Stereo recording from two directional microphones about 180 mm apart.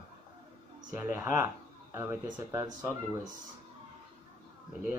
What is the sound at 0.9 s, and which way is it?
Speech, 15° right (ahead or behind).